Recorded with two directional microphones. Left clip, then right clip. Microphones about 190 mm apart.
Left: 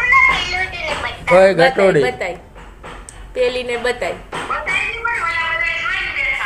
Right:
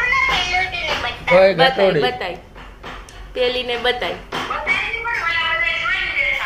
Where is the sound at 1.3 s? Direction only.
45° left (ahead or behind).